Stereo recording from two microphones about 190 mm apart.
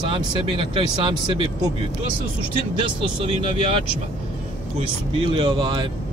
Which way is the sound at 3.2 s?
30° right (ahead or behind).